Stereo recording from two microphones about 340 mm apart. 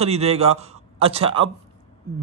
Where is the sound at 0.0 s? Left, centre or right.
Centre.